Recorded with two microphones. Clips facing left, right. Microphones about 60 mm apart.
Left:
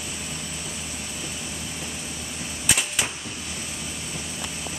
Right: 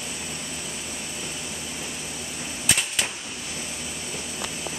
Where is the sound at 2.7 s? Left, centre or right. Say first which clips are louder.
Left 1 dB; centre.